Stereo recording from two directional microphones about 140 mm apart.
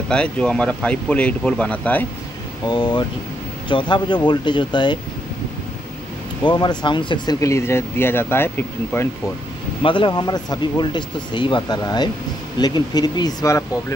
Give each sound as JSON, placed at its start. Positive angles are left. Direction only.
{"t": 0.1, "sound": "speech", "side_deg": 5}
{"t": 2.7, "sound": "speech", "side_deg": 35}
{"t": 6.4, "sound": "speech", "side_deg": 30}
{"t": 7.3, "sound": "speech", "side_deg": 20}
{"t": 9.8, "sound": "speech", "side_deg": 35}